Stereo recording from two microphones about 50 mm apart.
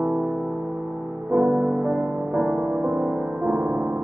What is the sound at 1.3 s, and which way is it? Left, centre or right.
Music, centre.